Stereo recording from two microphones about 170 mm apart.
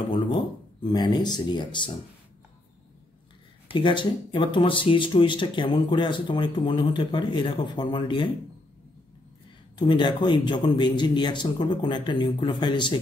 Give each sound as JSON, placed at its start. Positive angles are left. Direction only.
{"t": 0.9, "sound": "speech", "side_deg": 25}
{"t": 3.7, "sound": "speech", "side_deg": 30}
{"t": 9.8, "sound": "speech", "side_deg": 25}